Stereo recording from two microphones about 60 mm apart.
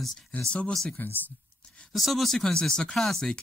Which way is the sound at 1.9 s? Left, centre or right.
Centre.